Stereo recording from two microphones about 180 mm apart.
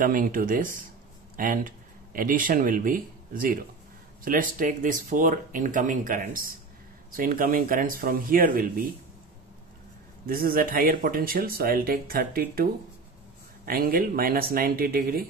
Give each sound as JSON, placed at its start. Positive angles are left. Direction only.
{"t": 0.0, "sound": "speech", "side_deg": -50}
{"t": 10.2, "sound": "speech", "side_deg": -55}
{"t": 13.7, "sound": "speech", "side_deg": -55}